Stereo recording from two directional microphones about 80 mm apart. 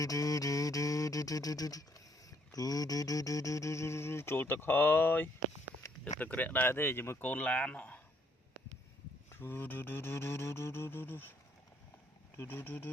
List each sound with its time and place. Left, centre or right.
0.0 s a sound: left
6.1 s music: left
9.3 s music: left
12.4 s music: left